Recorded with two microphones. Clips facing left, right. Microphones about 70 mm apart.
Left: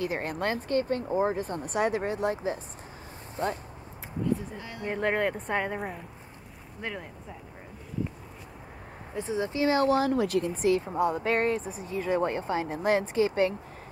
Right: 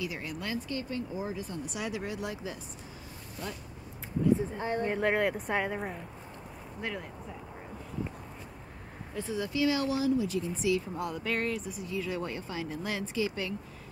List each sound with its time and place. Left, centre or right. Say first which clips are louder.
0.0 s speech: left 7 dB; left
4.6 s speech: right 9 dB; right
4.9 s speech: left 4 dB; centre
9.1 s speech: left 3 dB; left
10.9 s speech: left 8 dB; left
11.3 s speech: left 6 dB; left